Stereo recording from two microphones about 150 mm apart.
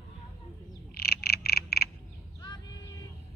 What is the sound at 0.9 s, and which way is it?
Frog, 90° left.